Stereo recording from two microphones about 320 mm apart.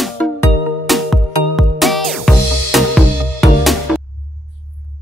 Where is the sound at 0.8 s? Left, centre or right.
Centre.